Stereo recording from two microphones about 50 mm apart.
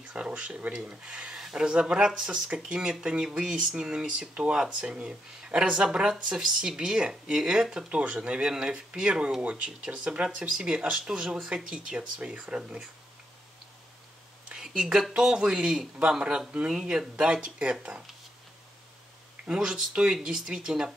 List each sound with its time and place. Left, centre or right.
0.1 s a sound: right
0.8 s speech: centre
14.5 s speech: centre
19.4 s speech: centre